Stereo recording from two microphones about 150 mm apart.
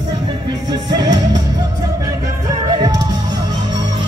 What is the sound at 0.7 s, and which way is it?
Music, 25° right (ahead or behind).